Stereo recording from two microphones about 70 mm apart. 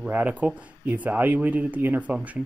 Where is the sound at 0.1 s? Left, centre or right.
Right.